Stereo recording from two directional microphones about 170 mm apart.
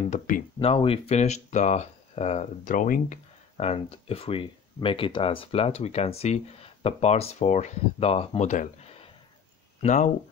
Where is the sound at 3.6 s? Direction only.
35° left (ahead or behind).